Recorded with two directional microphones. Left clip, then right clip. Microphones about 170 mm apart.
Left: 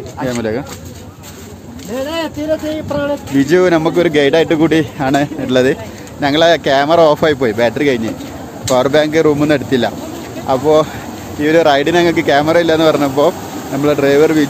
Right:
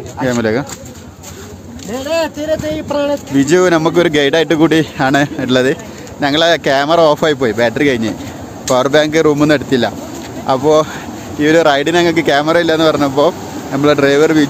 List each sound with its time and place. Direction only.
0.2 s a man's voice: 30° right (ahead or behind)
2.4 s a sound: 80° right
3.3 s a man's voice: 15° right (ahead or behind)
7.8 s a man's voice: 20° right (ahead or behind)
9.7 s a man's voice: 10° right (ahead or behind)
13.7 s a man's voice: 20° right (ahead or behind)